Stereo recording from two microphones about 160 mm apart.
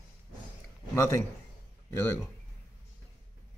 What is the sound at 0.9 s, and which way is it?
A man's voice, 20° left (ahead or behind).